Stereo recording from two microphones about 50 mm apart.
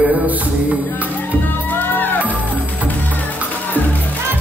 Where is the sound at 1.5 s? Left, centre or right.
Left.